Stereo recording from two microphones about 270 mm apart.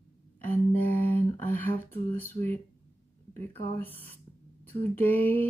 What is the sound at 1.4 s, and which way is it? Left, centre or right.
Speech, centre.